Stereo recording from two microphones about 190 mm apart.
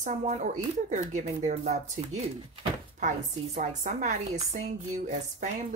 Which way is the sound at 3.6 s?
40° right (ahead or behind).